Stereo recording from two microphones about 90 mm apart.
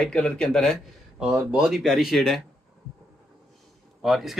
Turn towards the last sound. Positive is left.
turn(degrees=0)  # may be behind; listen again after turning